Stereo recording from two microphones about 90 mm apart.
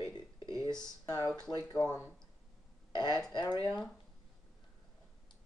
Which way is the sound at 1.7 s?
30° left (ahead or behind).